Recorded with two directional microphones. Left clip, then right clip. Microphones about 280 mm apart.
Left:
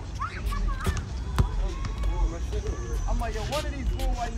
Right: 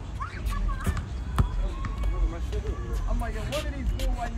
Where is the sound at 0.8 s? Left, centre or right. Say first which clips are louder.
Left 2 dB; centre.